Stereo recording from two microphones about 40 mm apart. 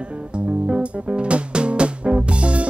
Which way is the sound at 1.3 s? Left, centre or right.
Right.